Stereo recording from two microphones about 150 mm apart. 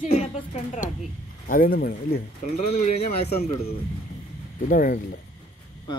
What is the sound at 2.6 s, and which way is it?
Speech, 50° left (ahead or behind).